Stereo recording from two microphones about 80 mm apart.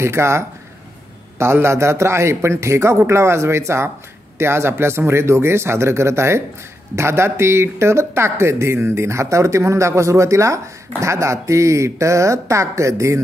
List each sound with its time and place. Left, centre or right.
0.0 s speech: right